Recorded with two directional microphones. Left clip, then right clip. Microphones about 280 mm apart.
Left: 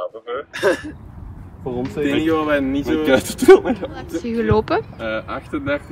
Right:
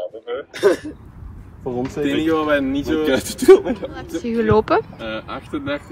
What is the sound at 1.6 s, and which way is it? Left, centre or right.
Speech, right.